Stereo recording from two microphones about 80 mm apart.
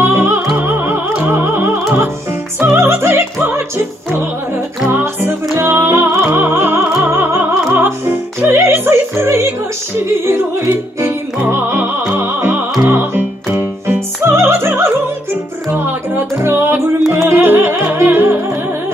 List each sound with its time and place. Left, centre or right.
0.0 s music: right
2.6 s opera: right
4.8 s music: right